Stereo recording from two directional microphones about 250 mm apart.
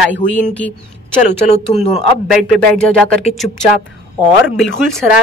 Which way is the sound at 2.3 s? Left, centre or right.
Centre.